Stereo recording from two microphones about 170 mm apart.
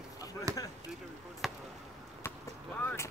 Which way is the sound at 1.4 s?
Centre (ahead or behind).